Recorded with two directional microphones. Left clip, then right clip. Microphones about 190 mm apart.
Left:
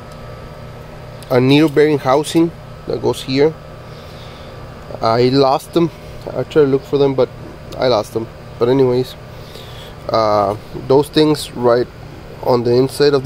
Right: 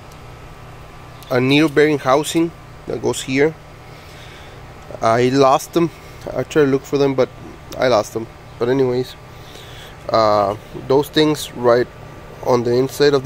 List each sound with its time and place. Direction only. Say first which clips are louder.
1.3 s speech: left 3 dB; 15° left (ahead or behind)
3.0 s speech: left 2 dB; centre (ahead or behind)
5.0 s speech: left 1 dB; 5° left (ahead or behind)
7.8 s speech: left 1 dB; 5° left (ahead or behind)